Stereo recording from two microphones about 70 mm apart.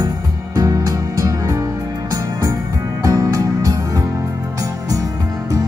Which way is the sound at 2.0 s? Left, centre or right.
Right.